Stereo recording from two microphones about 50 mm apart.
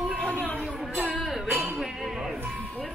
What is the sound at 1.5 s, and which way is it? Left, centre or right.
Music, right.